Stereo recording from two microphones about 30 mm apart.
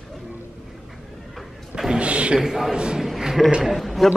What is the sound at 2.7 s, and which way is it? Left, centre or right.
Speech, right.